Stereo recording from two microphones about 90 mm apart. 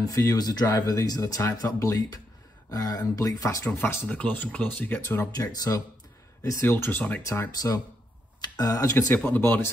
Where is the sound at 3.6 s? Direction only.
25° left (ahead or behind).